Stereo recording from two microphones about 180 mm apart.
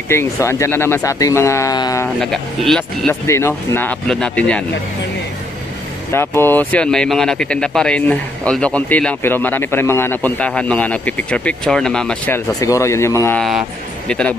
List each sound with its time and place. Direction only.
0.1 s speech: 15° left (ahead or behind)
2.1 s speech: centre (ahead or behind)
3.3 s speech: 15° left (ahead or behind)
6.1 s speech: 15° left (ahead or behind)
12.5 s speech: 15° left (ahead or behind)